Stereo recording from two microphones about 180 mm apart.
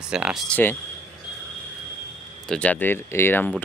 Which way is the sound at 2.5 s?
10° left (ahead or behind).